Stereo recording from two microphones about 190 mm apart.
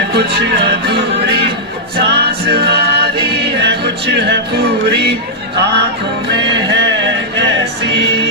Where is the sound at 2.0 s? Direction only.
60° right (ahead or behind).